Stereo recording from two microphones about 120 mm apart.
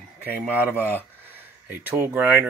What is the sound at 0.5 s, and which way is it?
Speech, 15° right (ahead or behind).